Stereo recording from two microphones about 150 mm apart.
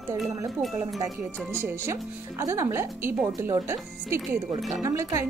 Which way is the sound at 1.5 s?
20° right (ahead or behind).